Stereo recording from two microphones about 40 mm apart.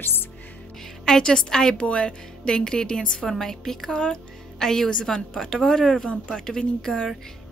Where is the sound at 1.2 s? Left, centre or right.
Centre.